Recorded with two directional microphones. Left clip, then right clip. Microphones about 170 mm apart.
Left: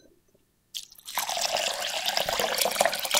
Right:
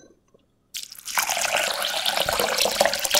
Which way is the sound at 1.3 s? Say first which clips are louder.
Right 2 dB; 20° left (ahead or behind).